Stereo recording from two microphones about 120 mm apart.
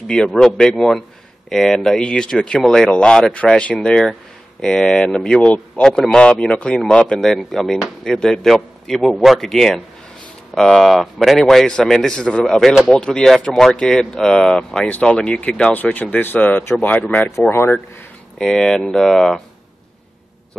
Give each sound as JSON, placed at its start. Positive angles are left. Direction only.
{"t": 0.1, "sound": "speech", "side_deg": 5}
{"t": 18.4, "sound": "speech", "side_deg": 0}